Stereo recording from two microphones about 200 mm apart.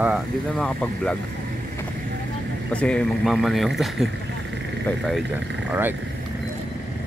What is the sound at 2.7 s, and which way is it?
Speech, 5° left (ahead or behind).